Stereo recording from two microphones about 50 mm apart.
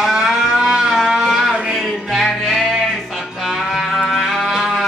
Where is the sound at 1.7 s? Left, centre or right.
Centre.